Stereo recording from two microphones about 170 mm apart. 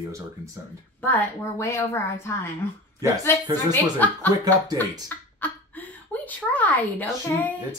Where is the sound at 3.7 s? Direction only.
10° left (ahead or behind).